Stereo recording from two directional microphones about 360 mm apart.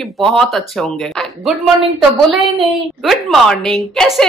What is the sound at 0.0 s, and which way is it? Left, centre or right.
Speech, centre.